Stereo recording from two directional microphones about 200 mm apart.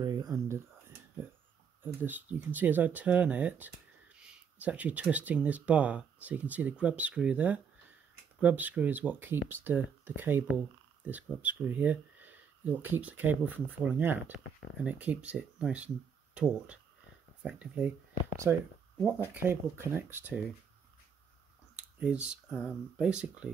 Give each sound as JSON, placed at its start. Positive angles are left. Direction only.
{"t": 0.0, "sound": "a sound", "side_deg": -20}
{"t": 1.8, "sound": "speech", "side_deg": -10}
{"t": 22.5, "sound": "speech", "side_deg": 5}